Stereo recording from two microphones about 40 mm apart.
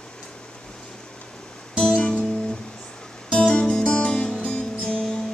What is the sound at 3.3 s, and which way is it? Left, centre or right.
Music, left.